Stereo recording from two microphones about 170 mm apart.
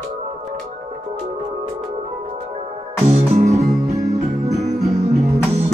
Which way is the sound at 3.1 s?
40° right (ahead or behind).